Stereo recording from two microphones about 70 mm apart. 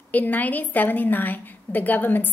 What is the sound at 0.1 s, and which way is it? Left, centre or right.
A woman's voice, left.